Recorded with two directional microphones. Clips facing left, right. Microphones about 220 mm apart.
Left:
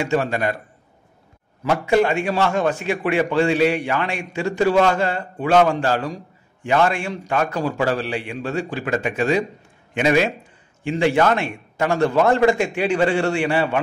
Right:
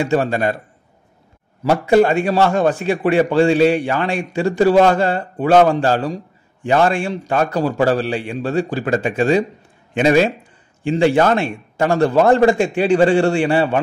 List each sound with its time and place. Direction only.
0.0 s a man's voice: 35° right (ahead or behind)
1.6 s a man's voice: 35° right (ahead or behind)